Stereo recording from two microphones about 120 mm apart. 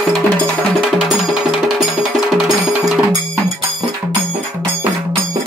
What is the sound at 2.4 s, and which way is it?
Music, 30° right (ahead or behind).